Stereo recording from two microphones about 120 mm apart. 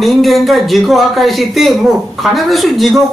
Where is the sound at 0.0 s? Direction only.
Centre (ahead or behind).